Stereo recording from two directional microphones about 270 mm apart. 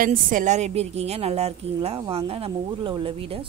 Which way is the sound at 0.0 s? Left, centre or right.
Right.